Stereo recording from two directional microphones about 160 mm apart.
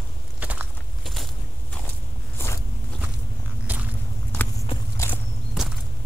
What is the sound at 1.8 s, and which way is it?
Walk, 15° left (ahead or behind).